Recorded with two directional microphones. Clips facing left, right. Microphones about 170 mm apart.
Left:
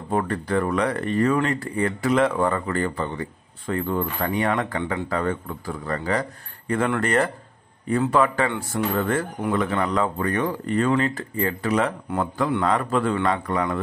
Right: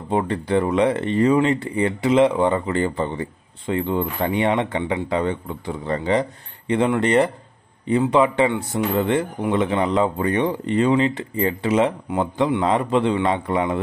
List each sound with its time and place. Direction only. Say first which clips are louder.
0.1 s speech: right 3 dB; 20° right (ahead or behind)
11.4 s speech: right 4 dB; 25° right (ahead or behind)